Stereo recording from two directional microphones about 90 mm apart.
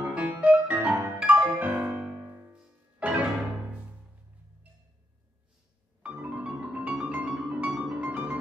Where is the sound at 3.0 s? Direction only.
15° right (ahead or behind).